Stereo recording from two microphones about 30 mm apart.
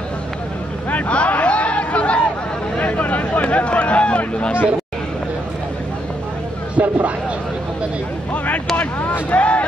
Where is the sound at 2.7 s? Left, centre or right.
Left.